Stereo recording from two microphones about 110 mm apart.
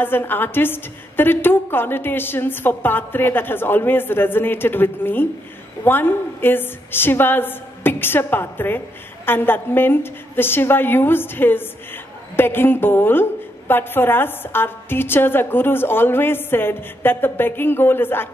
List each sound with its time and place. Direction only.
0.0 s a woman's voice: 20° left (ahead or behind)